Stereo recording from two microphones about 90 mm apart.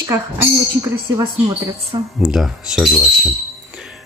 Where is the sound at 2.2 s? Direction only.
5° right (ahead or behind).